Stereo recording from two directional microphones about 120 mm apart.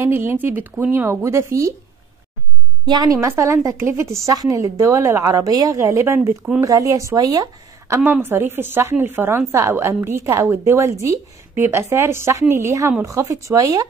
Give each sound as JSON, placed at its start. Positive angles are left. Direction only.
{"t": 0.0, "sound": "speech", "side_deg": -20}
{"t": 2.9, "sound": "a woman's voice", "side_deg": -30}
{"t": 6.6, "sound": "a woman's voice", "side_deg": -25}
{"t": 8.0, "sound": "a woman's voice", "side_deg": -15}